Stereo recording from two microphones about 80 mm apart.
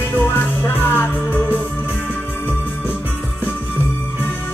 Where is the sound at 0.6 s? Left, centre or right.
Left.